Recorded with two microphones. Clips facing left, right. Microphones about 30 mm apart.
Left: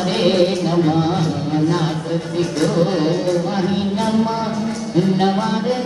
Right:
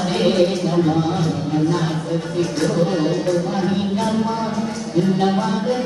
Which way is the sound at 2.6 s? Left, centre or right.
Left.